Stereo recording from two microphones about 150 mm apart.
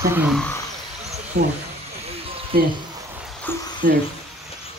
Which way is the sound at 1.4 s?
90° right.